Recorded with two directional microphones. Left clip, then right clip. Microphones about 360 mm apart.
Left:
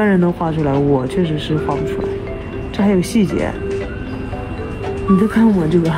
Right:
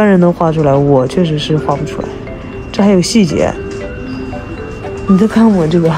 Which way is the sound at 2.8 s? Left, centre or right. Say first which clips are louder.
Right 6 dB; right.